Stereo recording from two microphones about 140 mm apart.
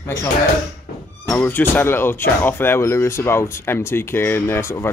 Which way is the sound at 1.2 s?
15° left (ahead or behind).